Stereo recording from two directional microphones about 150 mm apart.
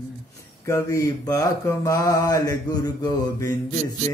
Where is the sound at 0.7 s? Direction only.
20° left (ahead or behind).